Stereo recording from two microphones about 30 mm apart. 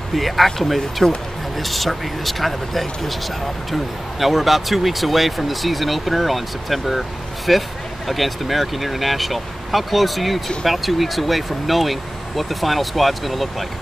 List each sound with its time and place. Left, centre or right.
0.1 s speech: centre
1.0 s speech: left
1.6 s speech: centre